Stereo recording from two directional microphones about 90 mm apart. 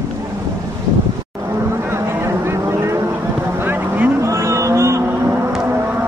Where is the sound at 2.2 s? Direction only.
30° right (ahead or behind).